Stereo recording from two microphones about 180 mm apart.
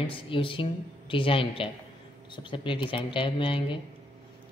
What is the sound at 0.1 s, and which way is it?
Speech, 30° left (ahead or behind).